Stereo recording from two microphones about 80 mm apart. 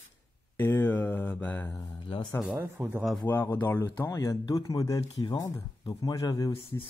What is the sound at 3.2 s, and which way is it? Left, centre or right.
Speech, left.